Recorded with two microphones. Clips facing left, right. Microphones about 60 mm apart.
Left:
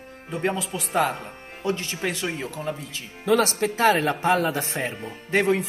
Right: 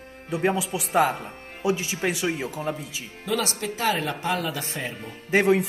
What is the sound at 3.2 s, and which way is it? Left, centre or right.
Speech, left.